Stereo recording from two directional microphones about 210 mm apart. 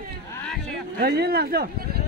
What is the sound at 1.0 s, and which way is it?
Speech, 50° right (ahead or behind).